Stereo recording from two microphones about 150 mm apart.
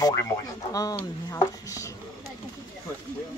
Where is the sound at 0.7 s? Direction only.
20° left (ahead or behind).